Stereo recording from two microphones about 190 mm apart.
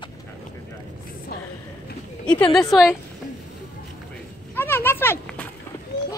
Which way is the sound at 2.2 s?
5° left (ahead or behind).